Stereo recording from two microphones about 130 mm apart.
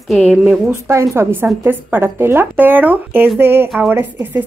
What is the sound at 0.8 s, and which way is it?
A woman's voice, 20° right (ahead or behind).